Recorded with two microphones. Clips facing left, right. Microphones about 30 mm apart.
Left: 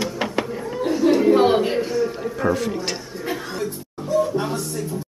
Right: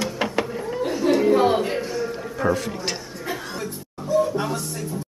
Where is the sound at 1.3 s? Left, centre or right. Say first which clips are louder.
Left 2 dB; centre.